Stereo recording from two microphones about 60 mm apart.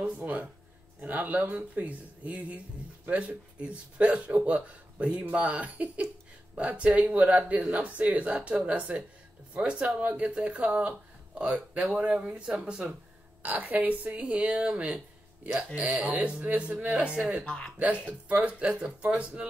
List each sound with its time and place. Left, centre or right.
0.2 s speech: right
13.4 s speech: right
17.5 s speech: centre
18.3 s speech: right